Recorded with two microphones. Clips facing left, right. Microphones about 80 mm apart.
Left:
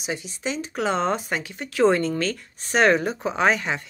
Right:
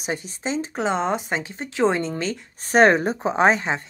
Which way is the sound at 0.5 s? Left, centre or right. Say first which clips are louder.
Right 1 dB; right.